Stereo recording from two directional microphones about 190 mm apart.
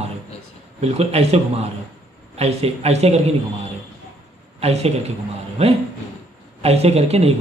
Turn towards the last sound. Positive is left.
turn(degrees=-35)  # may be behind; listen again after turning